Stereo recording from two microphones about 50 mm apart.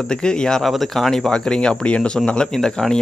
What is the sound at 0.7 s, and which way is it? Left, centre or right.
Speech, centre.